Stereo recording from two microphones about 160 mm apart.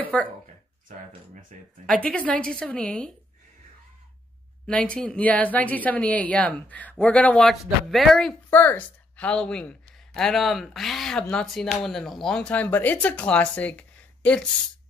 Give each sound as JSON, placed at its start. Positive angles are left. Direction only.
{"t": 0.0, "sound": "a sound", "side_deg": 10}
{"t": 1.5, "sound": "speech", "side_deg": -50}
{"t": 2.0, "sound": "speech", "side_deg": 10}
{"t": 4.6, "sound": "a woman's voice", "side_deg": 5}